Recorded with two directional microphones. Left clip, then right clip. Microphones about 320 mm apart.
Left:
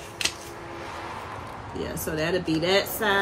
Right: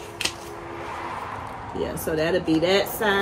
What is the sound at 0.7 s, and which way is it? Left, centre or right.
Vehicle, right.